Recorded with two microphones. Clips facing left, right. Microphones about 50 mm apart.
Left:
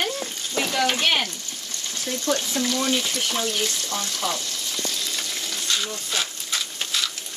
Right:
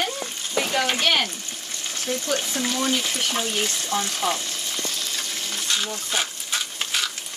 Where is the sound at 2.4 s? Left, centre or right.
Right.